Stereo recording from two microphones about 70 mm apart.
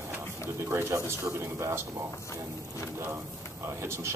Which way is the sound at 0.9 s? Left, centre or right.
Right.